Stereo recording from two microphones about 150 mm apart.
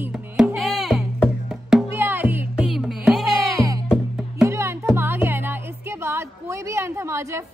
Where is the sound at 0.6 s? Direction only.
Centre (ahead or behind).